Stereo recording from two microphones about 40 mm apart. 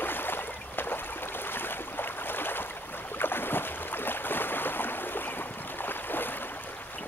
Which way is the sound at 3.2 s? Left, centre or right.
Left.